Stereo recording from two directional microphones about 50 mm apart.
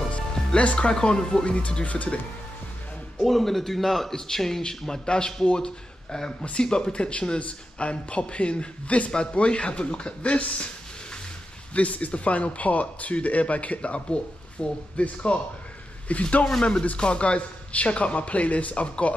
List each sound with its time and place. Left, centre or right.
0.1 s speech: left
3.2 s a man's voice: centre; by 10.7 s left
11.7 s a man's voice: left